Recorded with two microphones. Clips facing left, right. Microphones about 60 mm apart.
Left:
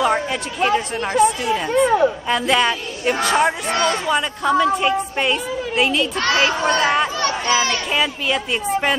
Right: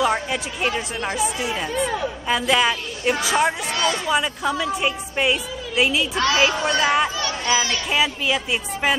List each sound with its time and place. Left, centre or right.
0.0 s a woman's voice: centre
1.7 s speech: left
2.2 s a woman's voice: centre
3.7 s a man's voice: left
4.1 s a woman's voice: centre
6.1 s a man's voice: left
6.8 s a woman's voice: centre
7.2 s speech: left
7.9 s a woman's voice: centre